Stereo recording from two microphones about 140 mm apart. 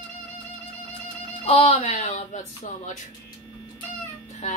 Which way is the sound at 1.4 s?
40° left (ahead or behind).